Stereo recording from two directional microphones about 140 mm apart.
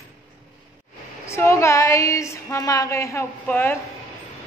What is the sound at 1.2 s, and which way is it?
A woman's voice, 20° left (ahead or behind).